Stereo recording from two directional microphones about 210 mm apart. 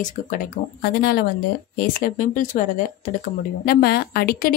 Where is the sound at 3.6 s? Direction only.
45° left (ahead or behind).